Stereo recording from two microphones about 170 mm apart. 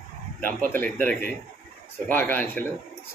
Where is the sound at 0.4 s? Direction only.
10° left (ahead or behind).